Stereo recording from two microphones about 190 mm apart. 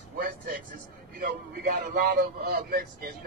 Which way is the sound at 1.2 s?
50° right (ahead or behind).